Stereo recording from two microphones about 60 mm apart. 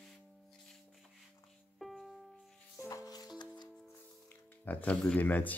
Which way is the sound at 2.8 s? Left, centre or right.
Left.